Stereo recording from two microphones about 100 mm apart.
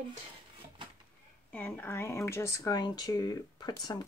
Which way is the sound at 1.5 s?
20° left (ahead or behind).